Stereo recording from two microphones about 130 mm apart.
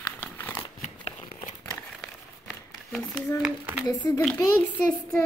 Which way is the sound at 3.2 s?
30° left (ahead or behind).